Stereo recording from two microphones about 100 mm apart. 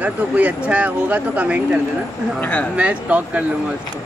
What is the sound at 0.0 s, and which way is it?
Speech, 15° right (ahead or behind).